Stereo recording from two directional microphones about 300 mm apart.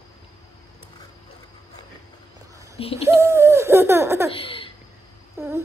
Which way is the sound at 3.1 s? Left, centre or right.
Centre.